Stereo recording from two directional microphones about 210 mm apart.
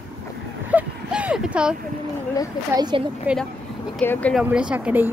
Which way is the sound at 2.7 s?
20° right (ahead or behind).